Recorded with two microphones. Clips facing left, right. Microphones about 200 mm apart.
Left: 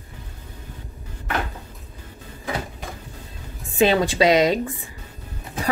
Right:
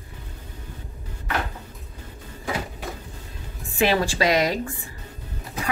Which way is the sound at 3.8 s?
20° left (ahead or behind).